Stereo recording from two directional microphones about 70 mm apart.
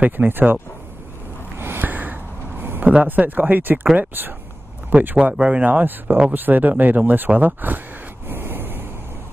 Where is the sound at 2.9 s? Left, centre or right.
Right.